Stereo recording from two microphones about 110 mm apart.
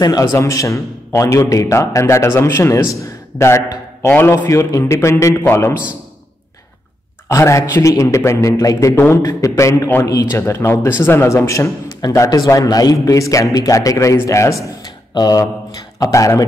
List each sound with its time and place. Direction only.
0.0 s a man's voice: 30° left (ahead or behind)
7.2 s a man's voice: 25° left (ahead or behind)
15.1 s a man's voice: 40° left (ahead or behind)